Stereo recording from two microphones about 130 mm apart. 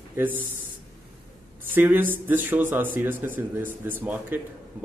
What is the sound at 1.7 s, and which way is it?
Speech, 15° right (ahead or behind).